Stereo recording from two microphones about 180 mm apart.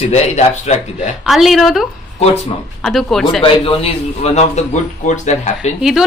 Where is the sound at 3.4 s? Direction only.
30° left (ahead or behind).